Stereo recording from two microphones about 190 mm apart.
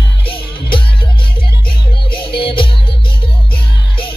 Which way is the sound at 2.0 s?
25° left (ahead or behind).